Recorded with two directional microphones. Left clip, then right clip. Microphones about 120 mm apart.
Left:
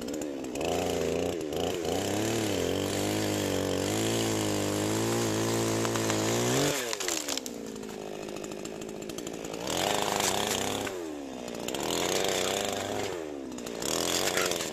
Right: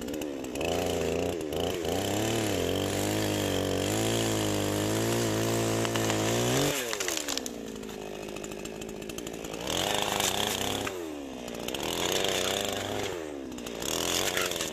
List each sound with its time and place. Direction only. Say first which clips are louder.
0.6 s a sound: even; 25° right (ahead or behind)
9.7 s chainsaw: even; 15° right (ahead or behind)
11.8 s chainsaw: even; 10° right (ahead or behind)